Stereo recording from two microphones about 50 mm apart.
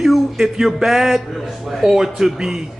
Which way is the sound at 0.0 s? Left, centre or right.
Centre.